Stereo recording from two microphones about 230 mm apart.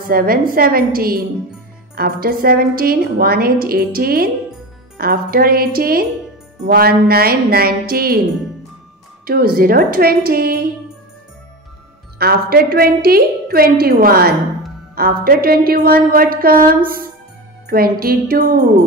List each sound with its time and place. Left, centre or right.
0.0 s a woman's voice: right
9.2 s a woman's voice: right
12.2 s a woman's voice: right